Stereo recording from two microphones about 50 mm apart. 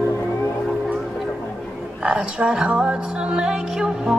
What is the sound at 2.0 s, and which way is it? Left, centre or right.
Music, right.